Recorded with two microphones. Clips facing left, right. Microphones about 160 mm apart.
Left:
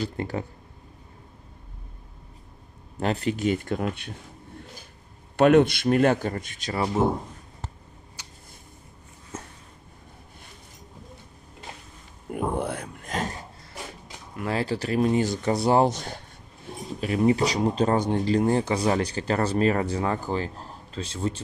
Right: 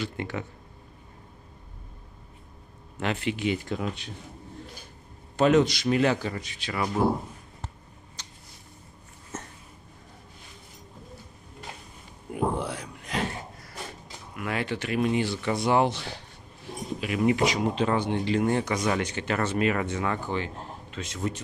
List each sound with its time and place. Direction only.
0.0 s speech: 35° left (ahead or behind)
3.0 s a man's voice: 40° left (ahead or behind); by 4.1 s 55° left (ahead or behind)
5.3 s a man's voice: 60° left (ahead or behind)
6.7 s speech: 30° left (ahead or behind)
8.2 s a sound: 10° left (ahead or behind)
12.3 s a sound: 55° left (ahead or behind)
14.3 s speech: 30° left (ahead or behind)